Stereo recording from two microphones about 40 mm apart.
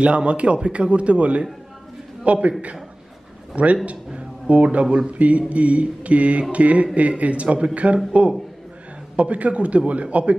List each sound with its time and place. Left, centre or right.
0.0 s speech: right
3.7 s speech: right
9.1 s speech: right